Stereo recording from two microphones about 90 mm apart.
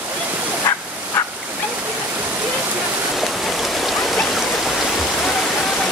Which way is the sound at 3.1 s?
Centre (ahead or behind).